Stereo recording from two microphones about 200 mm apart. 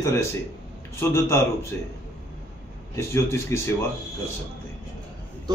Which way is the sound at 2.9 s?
15° left (ahead or behind).